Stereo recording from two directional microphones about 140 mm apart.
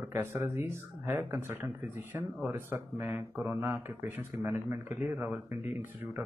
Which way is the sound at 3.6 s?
15° right (ahead or behind).